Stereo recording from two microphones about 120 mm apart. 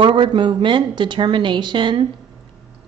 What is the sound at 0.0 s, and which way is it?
A woman's voice, 40° right (ahead or behind).